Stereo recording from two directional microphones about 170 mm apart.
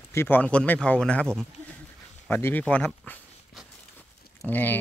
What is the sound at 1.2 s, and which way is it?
Speech, 15° right (ahead or behind).